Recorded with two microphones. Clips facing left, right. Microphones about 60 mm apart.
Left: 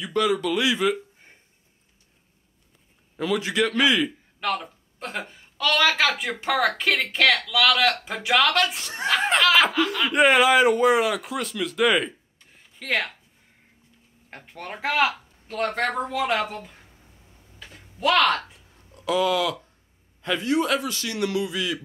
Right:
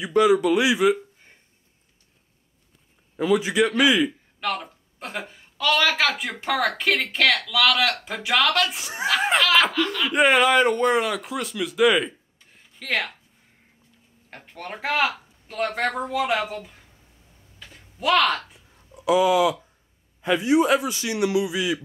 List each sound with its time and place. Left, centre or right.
0.0 s a man's voice: centre
3.2 s a man's voice: centre
8.8 s a man's voice: centre
14.3 s a man's voice: centre
17.9 s a man's voice: centre
18.5 s a sound: centre
20.2 s a man's voice: centre